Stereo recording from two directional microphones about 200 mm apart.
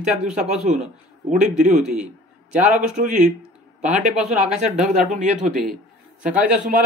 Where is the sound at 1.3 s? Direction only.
35° right (ahead or behind).